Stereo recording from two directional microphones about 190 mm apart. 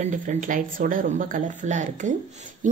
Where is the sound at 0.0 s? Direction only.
40° right (ahead or behind).